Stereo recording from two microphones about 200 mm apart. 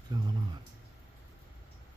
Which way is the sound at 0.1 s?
20° right (ahead or behind).